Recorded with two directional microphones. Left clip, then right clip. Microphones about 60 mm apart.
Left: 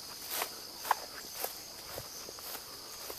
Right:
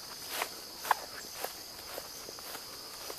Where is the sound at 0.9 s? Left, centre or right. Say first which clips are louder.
Right 2 dB; left.